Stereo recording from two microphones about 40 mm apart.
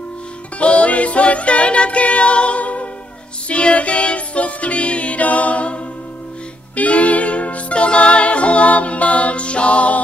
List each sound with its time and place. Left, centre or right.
0.6 s music: left
6.8 s music: left